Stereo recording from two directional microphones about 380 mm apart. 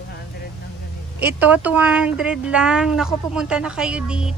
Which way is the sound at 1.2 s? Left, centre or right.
Centre.